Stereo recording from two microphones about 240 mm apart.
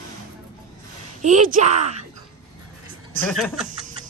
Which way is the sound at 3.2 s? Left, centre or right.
Centre.